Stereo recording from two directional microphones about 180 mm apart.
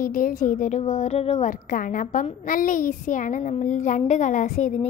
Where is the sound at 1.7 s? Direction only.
45° left (ahead or behind).